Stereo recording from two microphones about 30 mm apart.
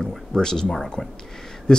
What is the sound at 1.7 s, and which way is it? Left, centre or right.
Speech, left.